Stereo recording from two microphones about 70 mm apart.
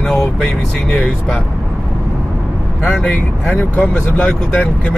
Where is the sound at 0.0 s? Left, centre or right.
Centre.